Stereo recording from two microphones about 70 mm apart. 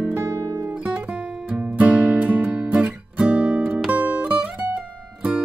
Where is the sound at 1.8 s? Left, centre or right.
Centre.